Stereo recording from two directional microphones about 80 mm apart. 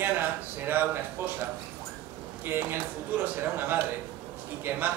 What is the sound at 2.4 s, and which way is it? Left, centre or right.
A man's voice, right.